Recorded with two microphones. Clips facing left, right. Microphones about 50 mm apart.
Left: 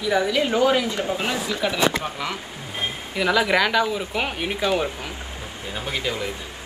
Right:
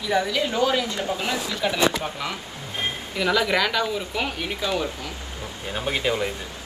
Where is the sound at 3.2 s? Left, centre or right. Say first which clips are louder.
Left 2 dB; centre.